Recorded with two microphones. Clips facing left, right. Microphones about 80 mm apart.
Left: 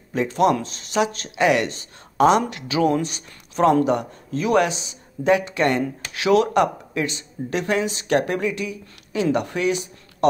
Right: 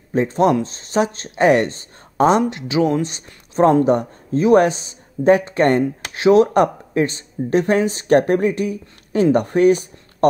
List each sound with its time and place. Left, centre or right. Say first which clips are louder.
0.1 s speech: right 3 dB; right